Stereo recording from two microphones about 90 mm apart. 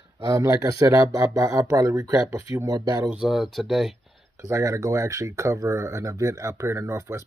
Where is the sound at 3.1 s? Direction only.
5° right (ahead or behind).